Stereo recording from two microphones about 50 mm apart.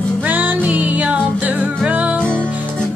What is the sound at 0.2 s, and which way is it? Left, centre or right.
Music, right.